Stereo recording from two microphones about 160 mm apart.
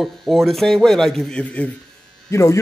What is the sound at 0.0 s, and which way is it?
A man's voice, centre (ahead or behind).